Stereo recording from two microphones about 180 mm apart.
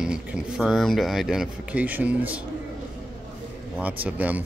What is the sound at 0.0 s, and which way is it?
Speech, 5° right (ahead or behind).